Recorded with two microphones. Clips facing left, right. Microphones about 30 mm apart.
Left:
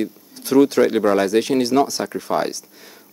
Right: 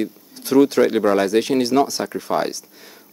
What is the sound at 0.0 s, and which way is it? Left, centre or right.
Speech, centre.